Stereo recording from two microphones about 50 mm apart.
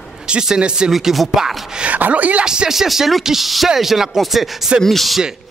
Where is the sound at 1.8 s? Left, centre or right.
Right.